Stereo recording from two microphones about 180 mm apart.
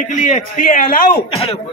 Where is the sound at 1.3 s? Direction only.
30° left (ahead or behind).